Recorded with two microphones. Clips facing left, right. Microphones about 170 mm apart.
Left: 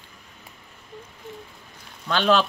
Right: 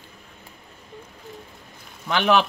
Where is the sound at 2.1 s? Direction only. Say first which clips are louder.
Right 1 dB; 15° right (ahead or behind).